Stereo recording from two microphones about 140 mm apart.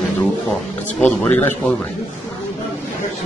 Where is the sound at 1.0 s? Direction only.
15° left (ahead or behind).